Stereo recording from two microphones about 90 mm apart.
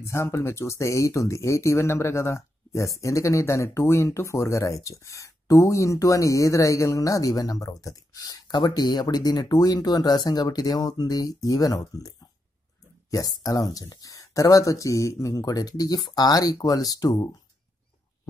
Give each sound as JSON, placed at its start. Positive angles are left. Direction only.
{"t": 0.0, "sound": "speech", "side_deg": 30}
{"t": 13.1, "sound": "speech", "side_deg": 40}